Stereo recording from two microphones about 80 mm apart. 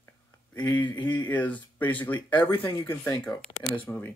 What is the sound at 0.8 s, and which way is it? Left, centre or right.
Speech, left.